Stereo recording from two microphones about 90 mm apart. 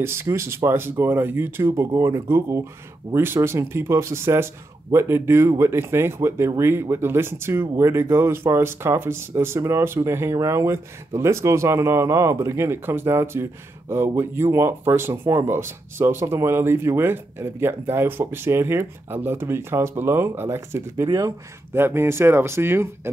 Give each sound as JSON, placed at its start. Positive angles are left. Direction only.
{"t": 0.0, "sound": "speech", "side_deg": -25}